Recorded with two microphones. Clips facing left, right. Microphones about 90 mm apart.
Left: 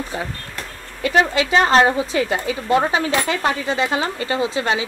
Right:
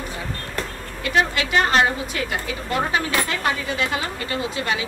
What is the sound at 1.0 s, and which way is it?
A woman's voice, 25° left (ahead or behind).